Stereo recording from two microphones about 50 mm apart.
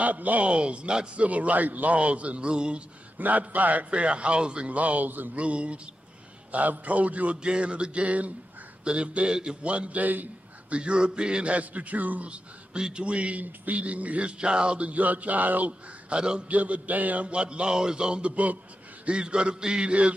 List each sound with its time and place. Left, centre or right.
0.0 s a man's voice: right
3.2 s a man's voice: right
5.4 s a man's voice: right
10.7 s a man's voice: right
12.7 s a man's voice: centre
16.2 s a man's voice: centre